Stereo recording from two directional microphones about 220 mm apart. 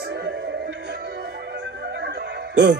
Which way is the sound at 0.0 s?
50° right (ahead or behind).